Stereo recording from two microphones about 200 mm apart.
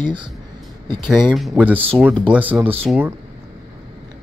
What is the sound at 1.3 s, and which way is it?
Speech, 5° right (ahead or behind).